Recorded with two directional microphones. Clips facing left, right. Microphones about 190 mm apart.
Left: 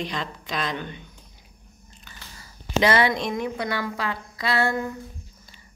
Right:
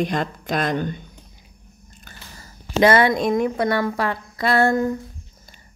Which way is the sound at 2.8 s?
50° right (ahead or behind).